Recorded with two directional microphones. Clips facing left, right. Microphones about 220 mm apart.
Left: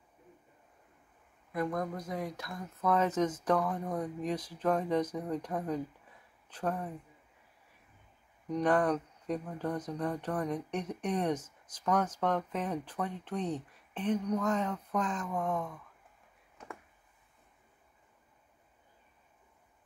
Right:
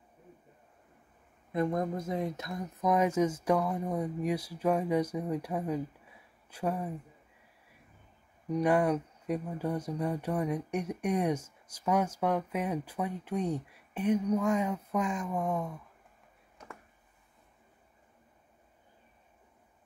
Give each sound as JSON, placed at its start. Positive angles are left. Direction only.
{"t": 1.5, "sound": "speech", "side_deg": -25}
{"t": 8.5, "sound": "speech", "side_deg": -10}